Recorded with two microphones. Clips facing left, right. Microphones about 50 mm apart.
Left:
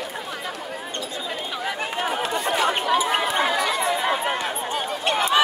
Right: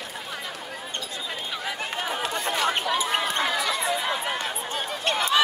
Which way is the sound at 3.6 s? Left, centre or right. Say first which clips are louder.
Left 3 dB; left.